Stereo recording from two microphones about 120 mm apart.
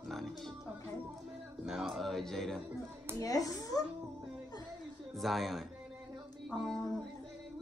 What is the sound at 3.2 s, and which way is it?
Speech, 30° left (ahead or behind).